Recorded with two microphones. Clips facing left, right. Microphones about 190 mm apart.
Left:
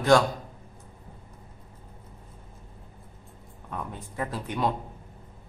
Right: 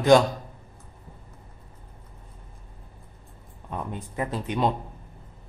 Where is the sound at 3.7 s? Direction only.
20° right (ahead or behind).